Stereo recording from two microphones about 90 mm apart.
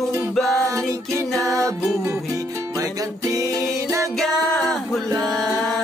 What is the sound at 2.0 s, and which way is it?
Music, 35° right (ahead or behind).